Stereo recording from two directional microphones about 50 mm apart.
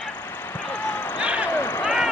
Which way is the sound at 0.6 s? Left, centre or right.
Left.